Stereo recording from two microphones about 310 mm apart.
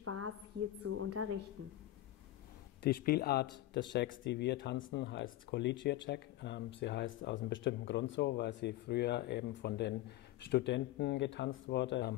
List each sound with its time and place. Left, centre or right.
0.0 s a sound: right
0.8 s a woman's voice: right
2.8 s speech: left